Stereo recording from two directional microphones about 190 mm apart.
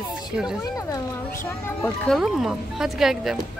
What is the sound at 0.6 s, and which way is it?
Speech, 15° left (ahead or behind).